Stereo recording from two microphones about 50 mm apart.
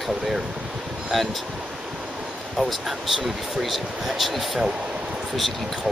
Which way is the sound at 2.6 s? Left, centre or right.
Centre.